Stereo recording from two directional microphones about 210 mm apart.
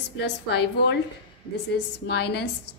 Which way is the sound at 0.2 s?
55° left (ahead or behind).